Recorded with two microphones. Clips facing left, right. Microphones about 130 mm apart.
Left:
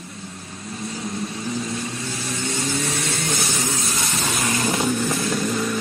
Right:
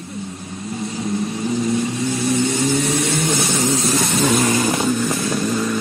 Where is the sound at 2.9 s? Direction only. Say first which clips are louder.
Right 7 dB; 25° right (ahead or behind).